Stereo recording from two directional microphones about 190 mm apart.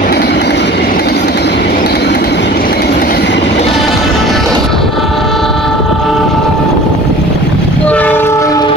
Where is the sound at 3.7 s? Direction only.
Centre (ahead or behind).